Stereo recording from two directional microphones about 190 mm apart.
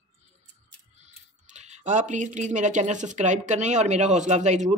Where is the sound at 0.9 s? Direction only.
35° right (ahead or behind).